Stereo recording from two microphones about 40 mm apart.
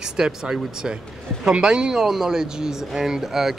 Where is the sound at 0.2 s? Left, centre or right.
Centre.